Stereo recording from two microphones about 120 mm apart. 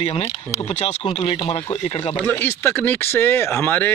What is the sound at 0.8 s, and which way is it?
Speech, 50° left (ahead or behind).